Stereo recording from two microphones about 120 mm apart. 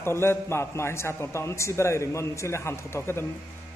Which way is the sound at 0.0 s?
20° left (ahead or behind).